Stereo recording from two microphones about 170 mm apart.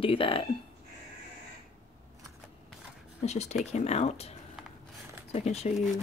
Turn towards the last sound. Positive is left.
turn(degrees=40)  # may be behind; listen again after turning